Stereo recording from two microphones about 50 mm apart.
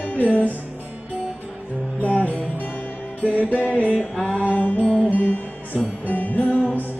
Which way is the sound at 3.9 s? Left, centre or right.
Left.